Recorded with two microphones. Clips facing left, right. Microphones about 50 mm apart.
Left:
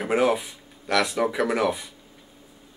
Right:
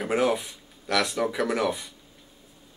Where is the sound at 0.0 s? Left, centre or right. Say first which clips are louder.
Left 2 dB; centre.